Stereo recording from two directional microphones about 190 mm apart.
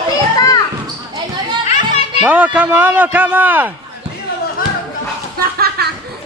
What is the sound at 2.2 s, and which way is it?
A man's voice, 10° right (ahead or behind).